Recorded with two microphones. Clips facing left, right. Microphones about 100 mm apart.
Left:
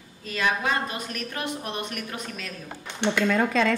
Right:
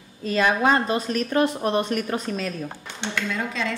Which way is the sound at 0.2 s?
35° right (ahead or behind).